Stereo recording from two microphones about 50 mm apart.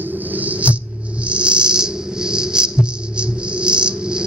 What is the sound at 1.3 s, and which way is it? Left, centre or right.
Music, right.